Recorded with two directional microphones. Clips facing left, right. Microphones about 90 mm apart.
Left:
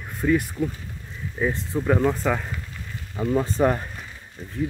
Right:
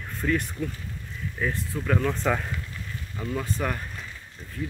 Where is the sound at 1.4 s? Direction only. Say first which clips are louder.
Left 5 dB; 20° left (ahead or behind).